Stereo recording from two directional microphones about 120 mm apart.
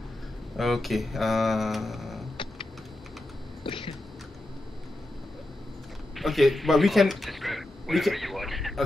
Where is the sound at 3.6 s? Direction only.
45° left (ahead or behind).